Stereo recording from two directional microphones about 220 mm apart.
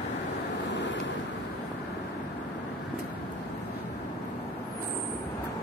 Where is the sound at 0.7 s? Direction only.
55° left (ahead or behind).